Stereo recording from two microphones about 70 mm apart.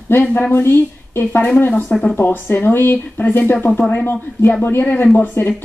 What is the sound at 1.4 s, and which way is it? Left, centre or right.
Speech, left.